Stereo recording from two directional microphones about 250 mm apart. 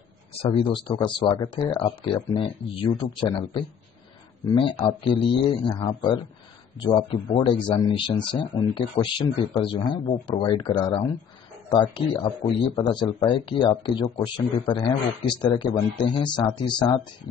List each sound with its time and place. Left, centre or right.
0.4 s speech: left